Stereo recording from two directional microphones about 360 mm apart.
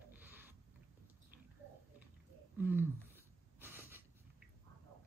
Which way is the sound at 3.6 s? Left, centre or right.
Centre.